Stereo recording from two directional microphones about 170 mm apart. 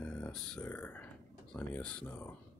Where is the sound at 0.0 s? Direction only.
5° left (ahead or behind).